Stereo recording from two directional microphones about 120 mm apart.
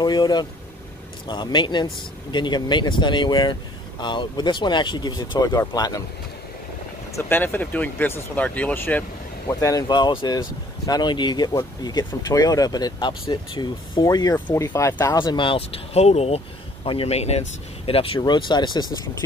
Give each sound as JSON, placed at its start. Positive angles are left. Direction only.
{"t": 0.0, "sound": "speech", "side_deg": 35}
{"t": 7.2, "sound": "speech", "side_deg": 15}
{"t": 9.5, "sound": "speech", "side_deg": 25}
{"t": 14.3, "sound": "speech", "side_deg": 20}
{"t": 15.1, "sound": "speech", "side_deg": 40}
{"t": 17.8, "sound": "speech", "side_deg": 50}
{"t": 18.2, "sound": "speech", "side_deg": 40}